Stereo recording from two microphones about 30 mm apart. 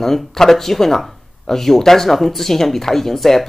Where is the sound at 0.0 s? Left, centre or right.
Centre.